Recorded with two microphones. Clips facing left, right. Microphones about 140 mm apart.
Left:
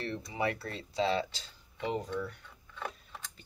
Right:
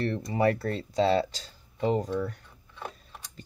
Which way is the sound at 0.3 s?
45° right (ahead or behind).